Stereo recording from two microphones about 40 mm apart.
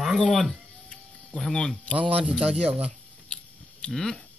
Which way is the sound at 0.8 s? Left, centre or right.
Centre.